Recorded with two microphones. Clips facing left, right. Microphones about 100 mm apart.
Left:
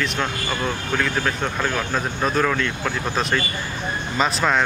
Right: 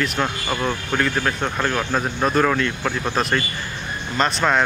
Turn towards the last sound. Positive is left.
turn(degrees=0)  # may be behind; listen again after turning